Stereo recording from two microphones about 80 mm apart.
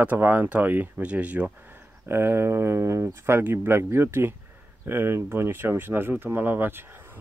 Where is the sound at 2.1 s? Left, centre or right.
Right.